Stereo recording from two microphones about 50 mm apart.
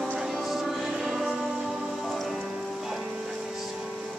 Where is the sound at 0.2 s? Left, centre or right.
Centre.